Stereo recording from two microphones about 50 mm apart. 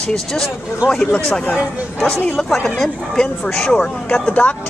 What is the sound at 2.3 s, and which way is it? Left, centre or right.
Speech, centre.